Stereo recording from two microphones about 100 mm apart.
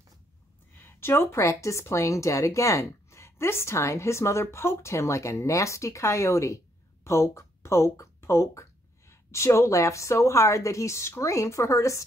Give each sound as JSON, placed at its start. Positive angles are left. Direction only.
{"t": 0.7, "sound": "a woman's voice", "side_deg": 25}